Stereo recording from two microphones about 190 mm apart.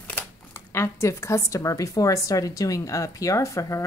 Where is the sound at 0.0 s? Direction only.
10° left (ahead or behind).